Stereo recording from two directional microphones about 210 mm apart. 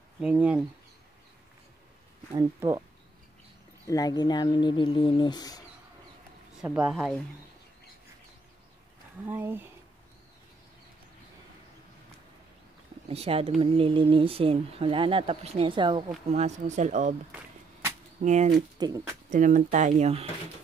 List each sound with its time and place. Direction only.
0.2 s speech: 5° right (ahead or behind)
2.3 s speech: 15° right (ahead or behind)
3.8 s speech: 15° left (ahead or behind)
6.6 s speech: 5° right (ahead or behind)
9.3 s speech: 10° right (ahead or behind)
13.1 s speech: 30° right (ahead or behind)
16.3 s speech: 35° right (ahead or behind)
18.2 s speech: 35° right (ahead or behind)
18.5 s speech: 20° right (ahead or behind)
19.3 s speech: 35° right (ahead or behind)